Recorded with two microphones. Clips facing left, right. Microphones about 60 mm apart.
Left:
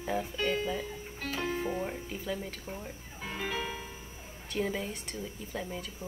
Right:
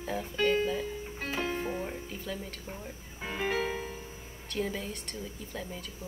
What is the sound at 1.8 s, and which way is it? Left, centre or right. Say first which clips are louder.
Speech: left 2 dB; centre.